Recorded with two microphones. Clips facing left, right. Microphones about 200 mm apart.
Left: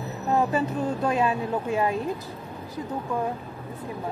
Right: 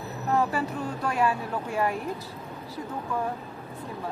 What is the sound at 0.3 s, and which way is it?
A woman's voice, 20° left (ahead or behind).